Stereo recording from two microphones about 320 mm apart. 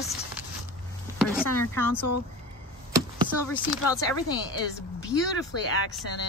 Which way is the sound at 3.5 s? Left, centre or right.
Centre.